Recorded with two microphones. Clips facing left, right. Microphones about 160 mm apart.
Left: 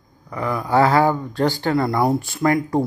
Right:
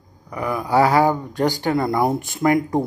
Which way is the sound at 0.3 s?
15° right (ahead or behind).